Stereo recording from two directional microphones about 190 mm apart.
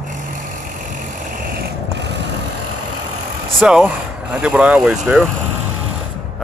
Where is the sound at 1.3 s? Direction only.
50° right (ahead or behind); by 2.2 s 65° right (ahead or behind).